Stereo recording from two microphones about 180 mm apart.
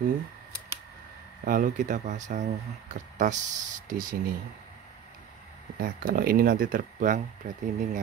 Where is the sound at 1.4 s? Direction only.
50° right (ahead or behind).